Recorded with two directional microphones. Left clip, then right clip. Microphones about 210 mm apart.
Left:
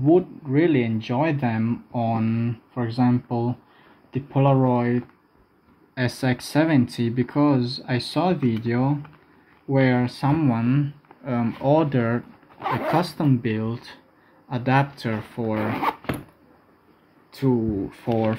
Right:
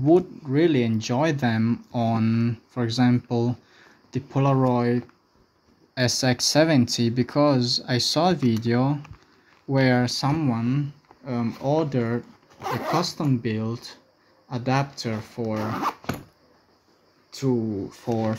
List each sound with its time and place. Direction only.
0.0 s speech: 30° right (ahead or behind)
10.3 s speech: 5° right (ahead or behind)
17.3 s speech: 5° right (ahead or behind)